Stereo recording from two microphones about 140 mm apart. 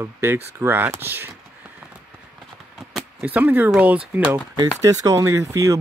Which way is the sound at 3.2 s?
10° right (ahead or behind).